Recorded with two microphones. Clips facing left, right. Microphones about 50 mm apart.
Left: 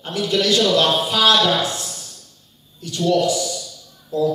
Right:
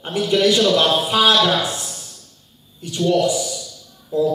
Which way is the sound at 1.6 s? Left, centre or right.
Right.